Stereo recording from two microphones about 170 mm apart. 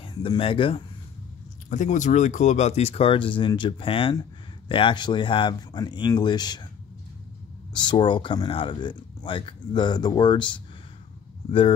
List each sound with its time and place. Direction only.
0.0 s speech: 30° left (ahead or behind)
1.7 s speech: 45° left (ahead or behind); by 6.7 s 25° left (ahead or behind)
7.7 s speech: 25° left (ahead or behind)